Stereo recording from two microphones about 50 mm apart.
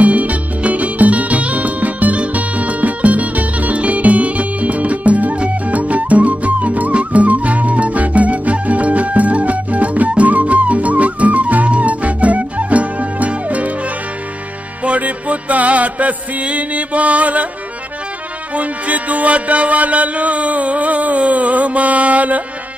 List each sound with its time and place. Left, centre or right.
0.0 s music: right
14.8 s music: right
18.5 s music: right